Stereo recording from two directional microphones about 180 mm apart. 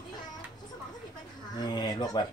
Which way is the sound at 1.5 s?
25° left (ahead or behind).